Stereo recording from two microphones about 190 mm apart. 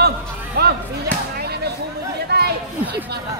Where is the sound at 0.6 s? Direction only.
55° right (ahead or behind).